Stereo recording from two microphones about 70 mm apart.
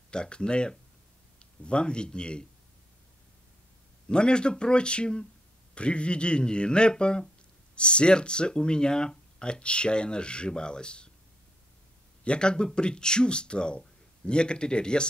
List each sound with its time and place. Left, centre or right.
0.1 s speech: centre
4.1 s speech: centre
12.3 s speech: centre